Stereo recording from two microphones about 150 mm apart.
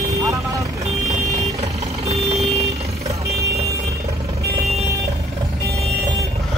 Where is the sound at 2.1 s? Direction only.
45° right (ahead or behind).